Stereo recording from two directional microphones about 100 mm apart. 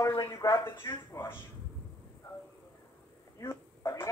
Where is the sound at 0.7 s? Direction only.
20° left (ahead or behind).